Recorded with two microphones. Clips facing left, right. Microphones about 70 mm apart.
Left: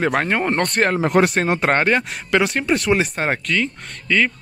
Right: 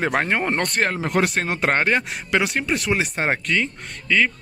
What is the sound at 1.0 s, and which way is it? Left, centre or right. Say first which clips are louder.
Speech: left 6 dB; left.